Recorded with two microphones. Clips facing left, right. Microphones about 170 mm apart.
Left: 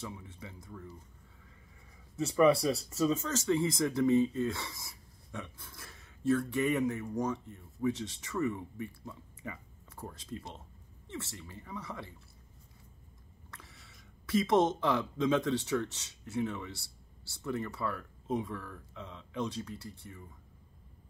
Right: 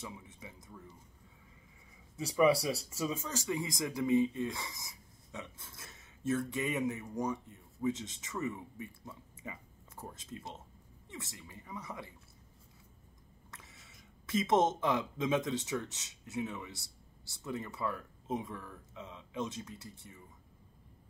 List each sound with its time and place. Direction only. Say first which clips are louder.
0.0 s speech: left 3 dB; 20° right (ahead or behind)
2.1 s speech: left 2 dB; 10° right (ahead or behind)
13.5 s speech: left 2 dB; 20° right (ahead or behind)